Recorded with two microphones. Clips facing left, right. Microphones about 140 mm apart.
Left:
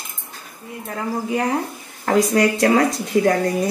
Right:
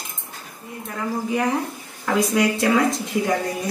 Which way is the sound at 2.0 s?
45° left (ahead or behind).